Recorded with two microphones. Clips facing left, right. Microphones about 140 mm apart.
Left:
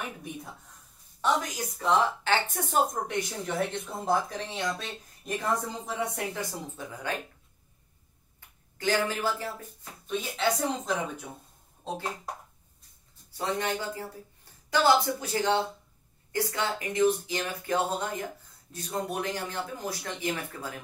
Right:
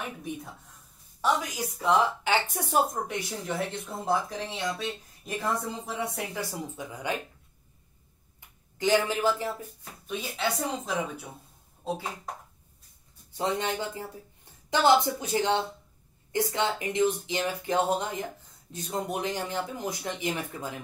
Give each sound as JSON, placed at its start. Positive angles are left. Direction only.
{"t": 0.0, "sound": "speech", "side_deg": 0}
{"t": 6.9, "sound": "speech", "side_deg": -15}
{"t": 8.7, "sound": "speech", "side_deg": -15}
{"t": 10.0, "sound": "speech", "side_deg": -5}
{"t": 13.4, "sound": "a woman's voice", "side_deg": -20}